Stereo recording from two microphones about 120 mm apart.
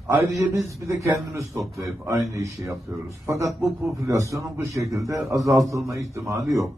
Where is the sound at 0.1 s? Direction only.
25° right (ahead or behind).